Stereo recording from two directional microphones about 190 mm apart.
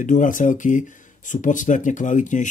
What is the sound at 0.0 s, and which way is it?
Speech, 40° left (ahead or behind).